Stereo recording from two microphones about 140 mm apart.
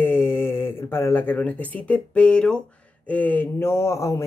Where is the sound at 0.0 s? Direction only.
15° left (ahead or behind).